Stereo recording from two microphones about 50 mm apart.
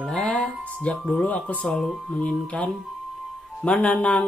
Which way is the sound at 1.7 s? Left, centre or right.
Centre.